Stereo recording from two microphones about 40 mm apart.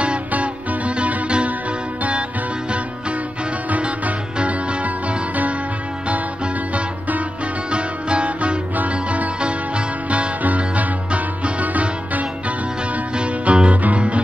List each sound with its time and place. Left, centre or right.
0.3 s music: right
4.4 s music: right
13.1 s music: right